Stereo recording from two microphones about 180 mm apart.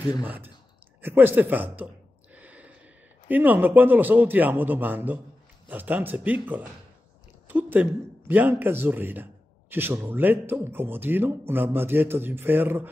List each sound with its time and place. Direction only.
0.2 s speech: 10° right (ahead or behind)
2.3 s gasp: 10° right (ahead or behind)
3.3 s speech: 10° right (ahead or behind)